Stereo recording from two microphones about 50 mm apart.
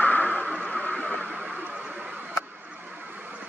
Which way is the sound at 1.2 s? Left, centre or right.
Centre.